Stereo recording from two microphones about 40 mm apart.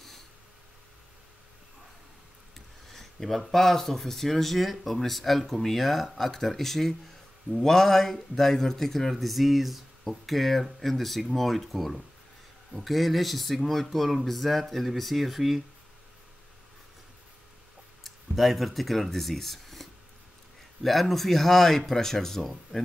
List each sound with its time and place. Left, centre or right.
2.5 s speech: centre
18.0 s speech: centre